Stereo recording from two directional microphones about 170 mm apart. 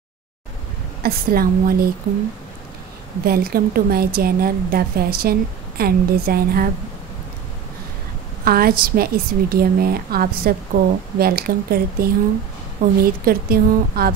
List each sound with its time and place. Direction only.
1.0 s a woman's voice: 60° right (ahead or behind)
3.3 s a woman's voice: 60° right (ahead or behind)
8.5 s a woman's voice: 60° right (ahead or behind)